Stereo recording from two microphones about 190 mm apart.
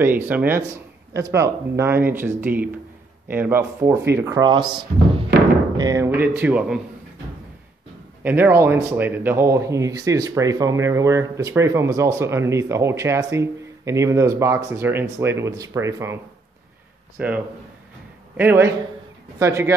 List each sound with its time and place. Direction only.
0.0 s a man's voice: 10° right (ahead or behind)
8.2 s a man's voice: 10° right (ahead or behind)
17.2 s a man's voice: 10° right (ahead or behind)